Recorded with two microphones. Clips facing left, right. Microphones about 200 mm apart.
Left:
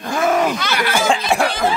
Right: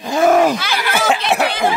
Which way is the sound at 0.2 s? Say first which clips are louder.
Right 5 dB; 40° right (ahead or behind).